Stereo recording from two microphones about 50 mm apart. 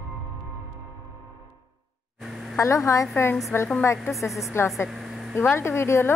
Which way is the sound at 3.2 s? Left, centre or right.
Left.